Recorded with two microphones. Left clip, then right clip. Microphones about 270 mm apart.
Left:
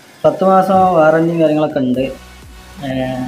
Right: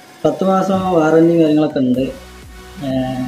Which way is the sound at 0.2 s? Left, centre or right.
Centre.